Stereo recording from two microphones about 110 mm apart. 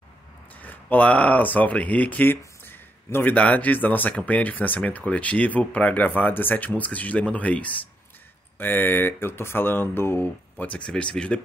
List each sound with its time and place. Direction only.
0.6 s speech: 15° left (ahead or behind)